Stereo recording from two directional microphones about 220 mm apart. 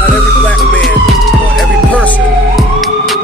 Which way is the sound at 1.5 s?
5° left (ahead or behind).